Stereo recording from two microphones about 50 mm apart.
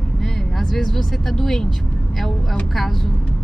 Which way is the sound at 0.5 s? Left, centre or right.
Centre.